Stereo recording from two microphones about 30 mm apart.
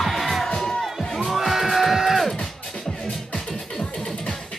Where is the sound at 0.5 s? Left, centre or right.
Centre.